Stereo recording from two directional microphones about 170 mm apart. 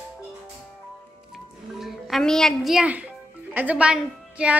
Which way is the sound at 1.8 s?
Centre (ahead or behind).